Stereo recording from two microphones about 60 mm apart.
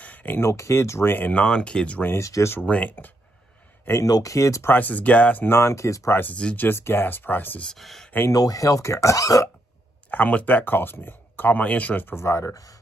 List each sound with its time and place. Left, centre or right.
0.0 s a sound: left
0.4 s speech: left
1.1 s speech: left
1.4 s speech: centre
2.1 s speech: left
2.6 s speech: left
4.0 s speech: left
4.6 s speech: left
5.4 s speech: left
6.5 s speech: left
7.6 s speech: centre
8.3 s speech: left
10.1 s speech: left
12.2 s speech: left